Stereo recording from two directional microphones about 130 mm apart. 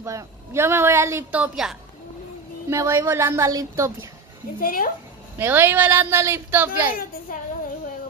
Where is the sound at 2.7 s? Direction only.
25° right (ahead or behind).